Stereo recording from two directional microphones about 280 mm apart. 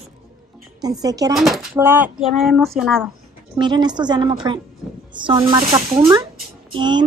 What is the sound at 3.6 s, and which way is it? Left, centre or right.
A woman's voice, centre.